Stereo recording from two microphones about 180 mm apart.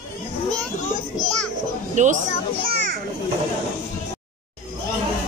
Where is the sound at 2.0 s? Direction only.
40° right (ahead or behind).